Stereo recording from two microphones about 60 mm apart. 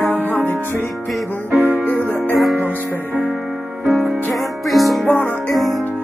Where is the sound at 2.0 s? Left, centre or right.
Left.